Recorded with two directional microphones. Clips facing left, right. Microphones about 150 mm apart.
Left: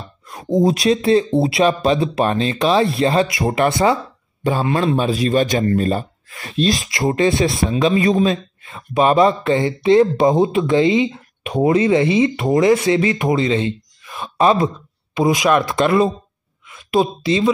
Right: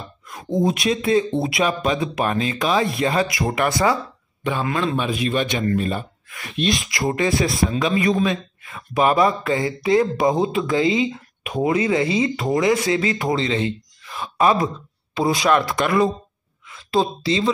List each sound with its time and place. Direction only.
0.5 s speech: 35° left (ahead or behind)
4.4 s a man's voice: 35° left (ahead or behind); by 17.5 s 20° left (ahead or behind)